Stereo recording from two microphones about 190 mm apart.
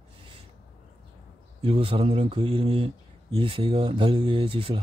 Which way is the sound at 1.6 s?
30° right (ahead or behind).